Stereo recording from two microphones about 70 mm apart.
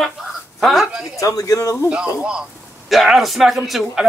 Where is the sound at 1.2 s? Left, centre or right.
Left.